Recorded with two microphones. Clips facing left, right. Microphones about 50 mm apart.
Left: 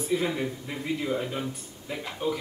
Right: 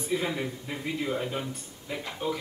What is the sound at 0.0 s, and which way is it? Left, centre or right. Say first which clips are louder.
Speech: left 2 dB; centre.